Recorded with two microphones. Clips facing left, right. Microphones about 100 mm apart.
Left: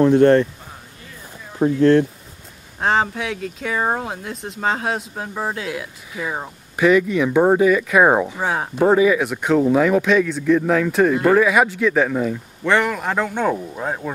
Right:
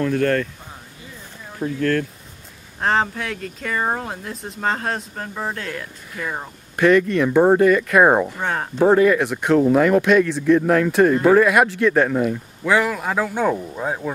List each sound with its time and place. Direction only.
0.0 s speech: 25° left (ahead or behind)
1.8 s speech: 25° left (ahead or behind)
2.8 s speech: centre (ahead or behind)